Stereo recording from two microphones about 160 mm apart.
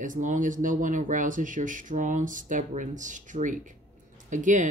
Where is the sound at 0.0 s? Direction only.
55° right (ahead or behind).